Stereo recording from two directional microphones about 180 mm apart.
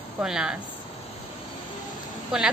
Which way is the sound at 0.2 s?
5° right (ahead or behind).